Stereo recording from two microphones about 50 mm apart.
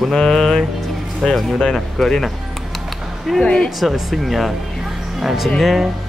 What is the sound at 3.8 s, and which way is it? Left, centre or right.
Speech, centre.